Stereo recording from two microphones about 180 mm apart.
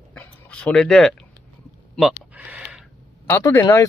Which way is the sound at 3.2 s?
10° left (ahead or behind).